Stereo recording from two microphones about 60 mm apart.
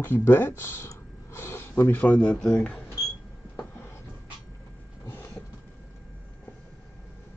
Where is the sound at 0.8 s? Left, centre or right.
Left.